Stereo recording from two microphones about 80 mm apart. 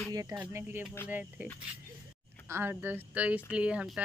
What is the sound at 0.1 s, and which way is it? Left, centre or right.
Speech, right.